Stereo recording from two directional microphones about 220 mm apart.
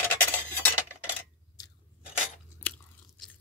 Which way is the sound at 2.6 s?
10° left (ahead or behind).